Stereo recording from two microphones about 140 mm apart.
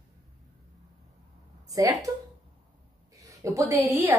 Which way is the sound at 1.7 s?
25° right (ahead or behind).